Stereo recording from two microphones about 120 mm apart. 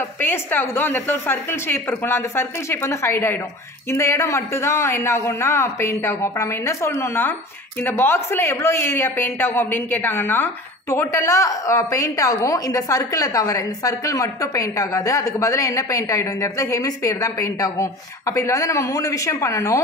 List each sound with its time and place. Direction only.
0.2 s speech: 15° left (ahead or behind)